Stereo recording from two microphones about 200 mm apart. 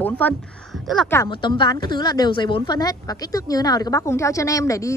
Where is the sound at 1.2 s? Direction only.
25° left (ahead or behind).